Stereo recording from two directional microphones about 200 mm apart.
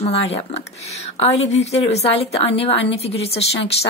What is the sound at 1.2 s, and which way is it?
Speech, 35° left (ahead or behind).